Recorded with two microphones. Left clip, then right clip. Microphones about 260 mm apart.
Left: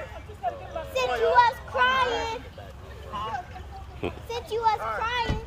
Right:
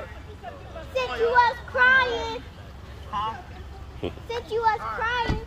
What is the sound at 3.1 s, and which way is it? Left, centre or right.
Boat, centre.